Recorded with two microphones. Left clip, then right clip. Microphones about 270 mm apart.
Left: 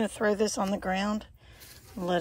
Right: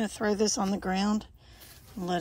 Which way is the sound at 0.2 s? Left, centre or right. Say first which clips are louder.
Left 2 dB; centre.